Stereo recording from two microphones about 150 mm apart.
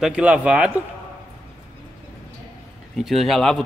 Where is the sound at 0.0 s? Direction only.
5° right (ahead or behind).